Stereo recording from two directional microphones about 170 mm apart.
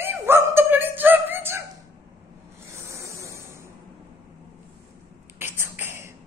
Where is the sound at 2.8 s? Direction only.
15° right (ahead or behind).